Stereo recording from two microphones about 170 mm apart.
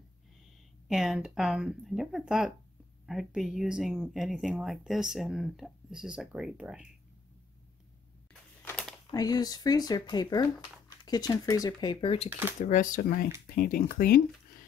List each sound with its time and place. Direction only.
0.8 s speech: 5° right (ahead or behind)
8.3 s a sound: 5° left (ahead or behind)
9.1 s speech: 20° left (ahead or behind)
12.3 s speech: 10° right (ahead or behind)
12.6 s speech: 50° left (ahead or behind)